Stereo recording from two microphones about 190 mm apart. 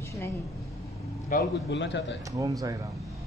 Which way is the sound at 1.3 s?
60° left (ahead or behind).